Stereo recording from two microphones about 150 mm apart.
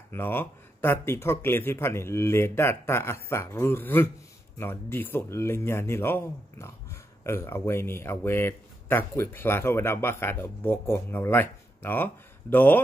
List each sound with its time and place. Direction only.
0.1 s speech: 15° left (ahead or behind)